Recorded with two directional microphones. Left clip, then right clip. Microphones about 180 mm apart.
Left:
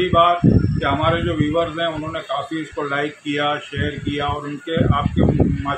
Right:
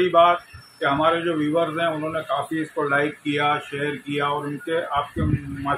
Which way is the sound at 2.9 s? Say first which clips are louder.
Even; 15° left (ahead or behind).